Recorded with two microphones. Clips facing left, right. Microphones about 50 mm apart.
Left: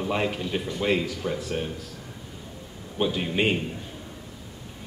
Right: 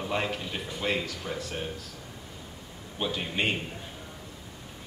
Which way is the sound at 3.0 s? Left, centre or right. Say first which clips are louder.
Left 5 dB; centre.